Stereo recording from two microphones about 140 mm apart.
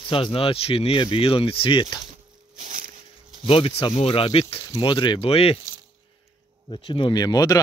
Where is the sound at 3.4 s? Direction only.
40° left (ahead or behind).